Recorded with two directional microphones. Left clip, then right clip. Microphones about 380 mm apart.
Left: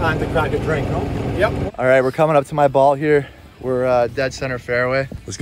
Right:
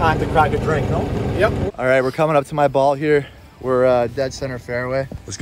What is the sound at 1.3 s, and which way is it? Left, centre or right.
Speech, centre.